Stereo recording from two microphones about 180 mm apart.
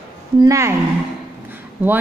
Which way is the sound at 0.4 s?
15° right (ahead or behind).